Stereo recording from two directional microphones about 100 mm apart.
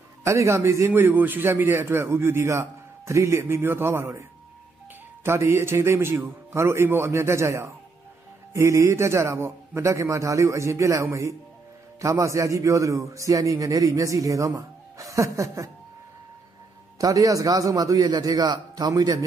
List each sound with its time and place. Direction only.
0.2 s a man's voice: 30° right (ahead or behind)
5.2 s a man's voice: 25° right (ahead or behind)
17.0 s a man's voice: 35° right (ahead or behind)